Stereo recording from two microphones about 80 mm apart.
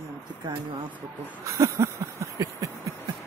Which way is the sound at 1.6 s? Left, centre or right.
Right.